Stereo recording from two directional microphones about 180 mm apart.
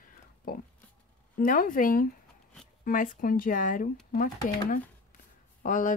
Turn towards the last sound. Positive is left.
turn(degrees=45)  # may be behind; listen again after turning